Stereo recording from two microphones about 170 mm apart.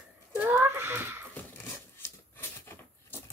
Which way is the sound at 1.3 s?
10° left (ahead or behind).